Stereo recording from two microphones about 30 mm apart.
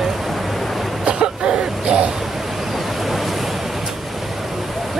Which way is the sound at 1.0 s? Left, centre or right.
Right.